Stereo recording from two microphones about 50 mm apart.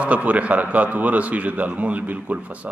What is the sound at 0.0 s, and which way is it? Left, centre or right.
A man's voice, right.